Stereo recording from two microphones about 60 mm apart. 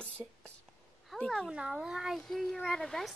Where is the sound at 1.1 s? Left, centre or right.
Centre.